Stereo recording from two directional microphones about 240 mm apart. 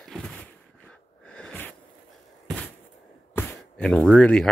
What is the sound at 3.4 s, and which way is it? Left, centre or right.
Speech, centre.